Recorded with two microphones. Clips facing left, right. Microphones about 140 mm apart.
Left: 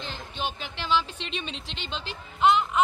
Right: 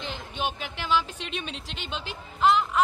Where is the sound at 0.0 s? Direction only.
15° right (ahead or behind).